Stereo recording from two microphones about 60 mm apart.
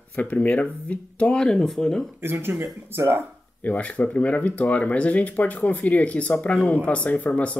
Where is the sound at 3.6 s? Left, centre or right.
Left.